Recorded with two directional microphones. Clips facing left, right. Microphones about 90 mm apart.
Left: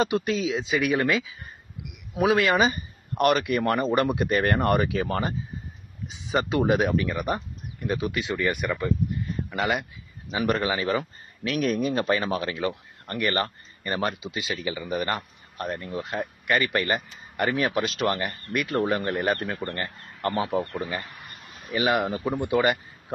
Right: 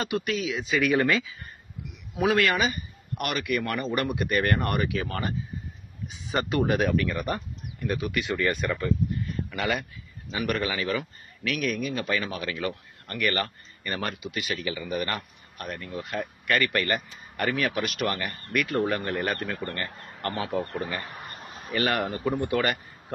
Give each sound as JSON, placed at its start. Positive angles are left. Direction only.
{"t": 0.0, "sound": "speech", "side_deg": 30}
{"t": 0.7, "sound": "speech", "side_deg": 5}
{"t": 6.0, "sound": "a man's voice", "side_deg": 20}
{"t": 21.0, "sound": "a sound", "side_deg": -35}
{"t": 21.7, "sound": "speech", "side_deg": 15}